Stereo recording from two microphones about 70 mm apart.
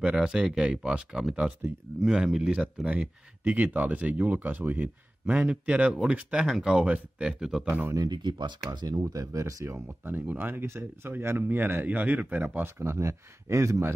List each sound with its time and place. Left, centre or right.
0.0 s speech: centre
2.6 s speech: centre
5.2 s speech: centre
8.1 s speech: right
10.0 s speech: right